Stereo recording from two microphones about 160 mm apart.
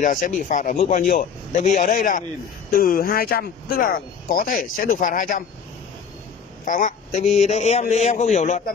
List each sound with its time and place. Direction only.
0.4 s a man's voice: 55° left (ahead or behind)
6.6 s a woman's voice: 55° left (ahead or behind)